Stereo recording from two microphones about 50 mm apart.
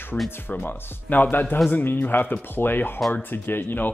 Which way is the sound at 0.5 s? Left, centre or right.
Left.